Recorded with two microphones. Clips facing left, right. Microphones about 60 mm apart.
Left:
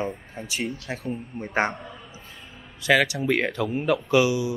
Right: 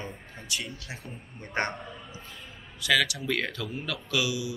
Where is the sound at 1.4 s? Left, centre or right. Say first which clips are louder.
Left 5 dB; centre.